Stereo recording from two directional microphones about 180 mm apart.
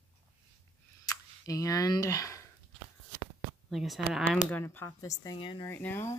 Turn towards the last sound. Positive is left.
turn(degrees=10)  # may be behind; listen again after turning